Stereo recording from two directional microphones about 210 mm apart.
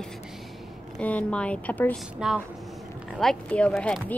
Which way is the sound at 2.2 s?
5° right (ahead or behind).